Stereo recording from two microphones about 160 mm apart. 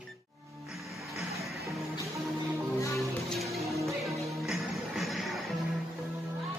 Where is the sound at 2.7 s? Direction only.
20° left (ahead or behind).